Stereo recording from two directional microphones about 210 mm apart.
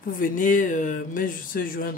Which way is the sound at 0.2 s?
40° left (ahead or behind).